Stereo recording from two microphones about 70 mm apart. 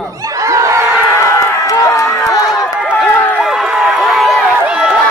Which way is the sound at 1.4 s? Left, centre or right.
Left.